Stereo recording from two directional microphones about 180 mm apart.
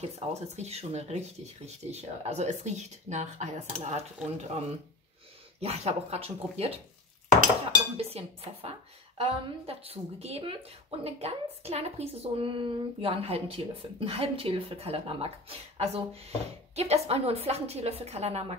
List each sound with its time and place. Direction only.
0.3 s speech: 35° right (ahead or behind)
8.0 s speech: 35° right (ahead or behind)